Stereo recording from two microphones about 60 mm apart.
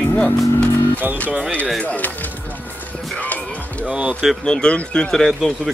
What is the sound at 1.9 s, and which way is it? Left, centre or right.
Speech, left.